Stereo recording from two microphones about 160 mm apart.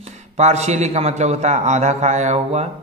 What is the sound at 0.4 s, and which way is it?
Speech, 45° right (ahead or behind).